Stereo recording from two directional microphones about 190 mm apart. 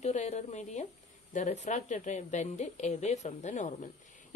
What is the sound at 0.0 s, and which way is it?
Speech, 35° left (ahead or behind).